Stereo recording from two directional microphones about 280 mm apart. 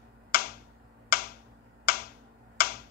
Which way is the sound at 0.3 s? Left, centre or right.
Left.